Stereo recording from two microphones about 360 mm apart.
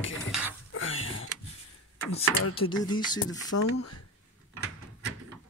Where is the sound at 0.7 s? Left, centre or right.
Left.